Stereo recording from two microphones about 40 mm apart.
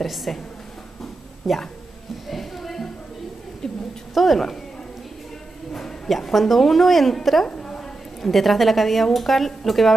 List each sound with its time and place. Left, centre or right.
0.0 s a woman's voice: centre
1.5 s a woman's voice: centre
2.2 s a sound: centre
4.1 s speech: centre
6.0 s a woman's voice: centre
7.4 s a sound: left
8.2 s a woman's voice: centre